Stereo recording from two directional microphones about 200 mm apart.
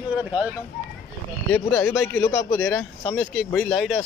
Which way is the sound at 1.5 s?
15° left (ahead or behind).